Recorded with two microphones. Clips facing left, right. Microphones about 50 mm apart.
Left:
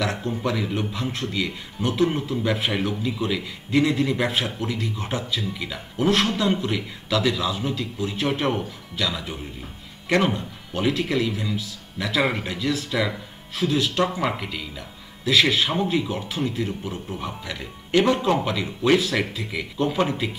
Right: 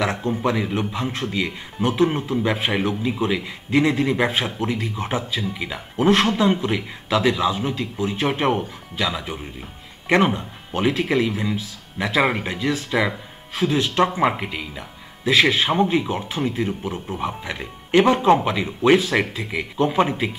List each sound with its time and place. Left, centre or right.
0.4 s a man's voice: right